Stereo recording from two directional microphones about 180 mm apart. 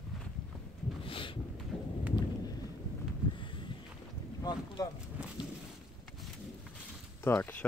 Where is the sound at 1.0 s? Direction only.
30° left (ahead or behind).